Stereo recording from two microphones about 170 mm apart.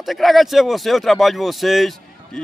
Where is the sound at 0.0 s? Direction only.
Centre (ahead or behind).